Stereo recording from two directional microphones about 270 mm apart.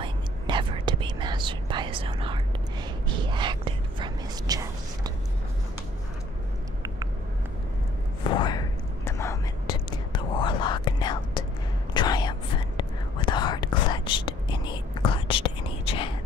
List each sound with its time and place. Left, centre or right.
0.0 s whispering: centre
8.3 s whispering: centre